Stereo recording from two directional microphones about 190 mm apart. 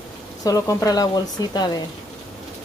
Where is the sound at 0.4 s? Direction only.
20° left (ahead or behind).